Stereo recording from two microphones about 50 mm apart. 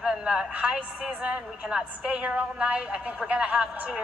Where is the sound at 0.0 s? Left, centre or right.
Centre.